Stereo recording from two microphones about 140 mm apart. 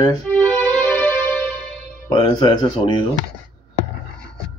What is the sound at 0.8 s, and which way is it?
Music, 15° left (ahead or behind).